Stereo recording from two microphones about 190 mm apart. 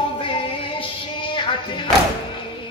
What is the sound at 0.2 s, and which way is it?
Music, 25° left (ahead or behind).